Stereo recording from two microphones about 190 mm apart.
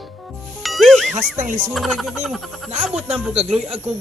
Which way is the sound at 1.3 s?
40° right (ahead or behind).